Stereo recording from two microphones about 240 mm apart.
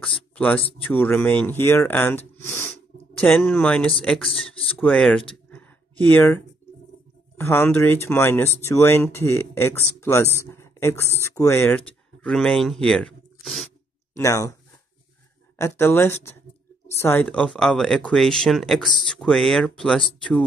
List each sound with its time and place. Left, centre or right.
0.6 s speech: left
0.8 s speech: centre
5.3 s a sound: centre
7.3 s speech: centre
14.1 s speech: centre
15.5 s speech: centre